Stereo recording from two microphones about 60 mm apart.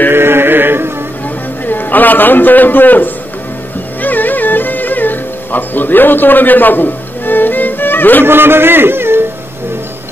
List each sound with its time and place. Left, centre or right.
0.1 s music: right
1.7 s a man's voice: left
4.0 s music: left
8.3 s a man's voice: right